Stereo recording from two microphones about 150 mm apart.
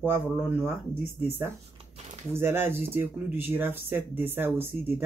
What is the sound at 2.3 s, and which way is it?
Speech, 15° right (ahead or behind).